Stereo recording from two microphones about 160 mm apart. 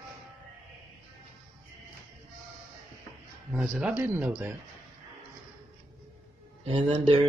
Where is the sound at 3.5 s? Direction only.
5° right (ahead or behind).